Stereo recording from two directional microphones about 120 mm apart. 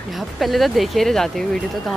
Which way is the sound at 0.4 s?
Centre (ahead or behind).